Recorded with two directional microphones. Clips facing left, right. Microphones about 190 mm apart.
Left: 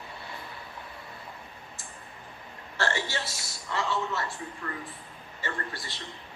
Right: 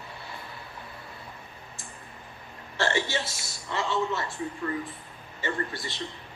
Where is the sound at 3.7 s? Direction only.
20° right (ahead or behind).